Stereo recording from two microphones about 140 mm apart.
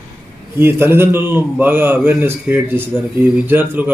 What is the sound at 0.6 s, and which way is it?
Speech, 15° right (ahead or behind).